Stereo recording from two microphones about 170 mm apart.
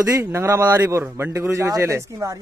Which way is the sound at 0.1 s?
15° right (ahead or behind).